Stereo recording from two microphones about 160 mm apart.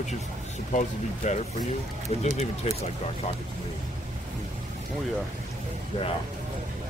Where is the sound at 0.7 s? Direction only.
45° left (ahead or behind).